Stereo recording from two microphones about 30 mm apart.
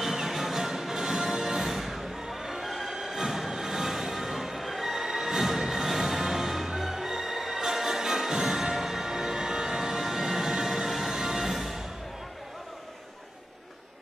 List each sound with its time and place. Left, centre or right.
0.0 s music: centre